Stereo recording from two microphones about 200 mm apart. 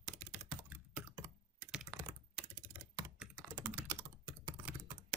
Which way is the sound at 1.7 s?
5° right (ahead or behind).